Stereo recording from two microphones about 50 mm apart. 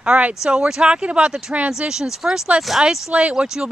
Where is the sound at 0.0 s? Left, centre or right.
Right.